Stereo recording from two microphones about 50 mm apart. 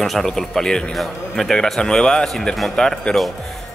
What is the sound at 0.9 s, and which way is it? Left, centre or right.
A man's voice, centre.